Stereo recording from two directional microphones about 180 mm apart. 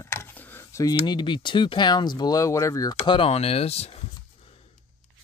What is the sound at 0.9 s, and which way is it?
Speech, 25° left (ahead or behind).